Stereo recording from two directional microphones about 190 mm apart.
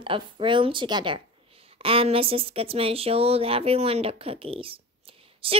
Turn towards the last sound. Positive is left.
turn(degrees=-30)  # may be behind; listen again after turning